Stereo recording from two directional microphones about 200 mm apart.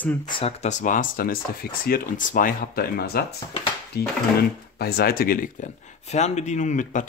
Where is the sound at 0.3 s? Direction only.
30° left (ahead or behind).